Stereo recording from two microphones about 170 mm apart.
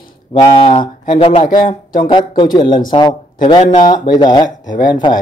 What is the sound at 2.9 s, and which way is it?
Speech, 35° left (ahead or behind).